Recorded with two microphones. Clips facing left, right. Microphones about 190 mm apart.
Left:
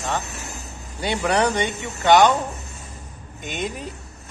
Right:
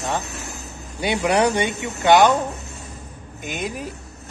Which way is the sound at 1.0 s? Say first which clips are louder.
Right 2 dB; 15° right (ahead or behind).